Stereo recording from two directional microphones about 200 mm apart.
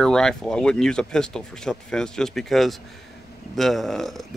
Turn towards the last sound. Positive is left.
turn(degrees=0)  # may be behind; listen again after turning